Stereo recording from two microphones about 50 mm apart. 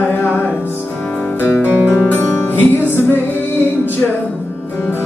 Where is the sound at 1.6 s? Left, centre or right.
Right.